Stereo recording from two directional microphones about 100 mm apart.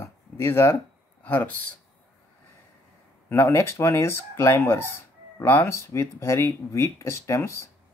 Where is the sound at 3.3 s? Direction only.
25° left (ahead or behind).